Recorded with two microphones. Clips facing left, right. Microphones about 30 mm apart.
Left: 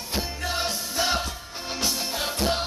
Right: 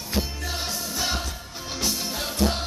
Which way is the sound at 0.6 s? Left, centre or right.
Centre.